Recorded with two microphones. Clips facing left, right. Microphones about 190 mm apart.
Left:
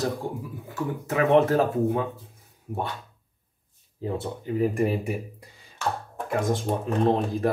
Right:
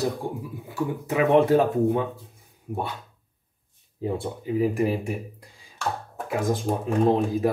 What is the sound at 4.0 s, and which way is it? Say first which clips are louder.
Speech: right 2 dB; 10° right (ahead or behind).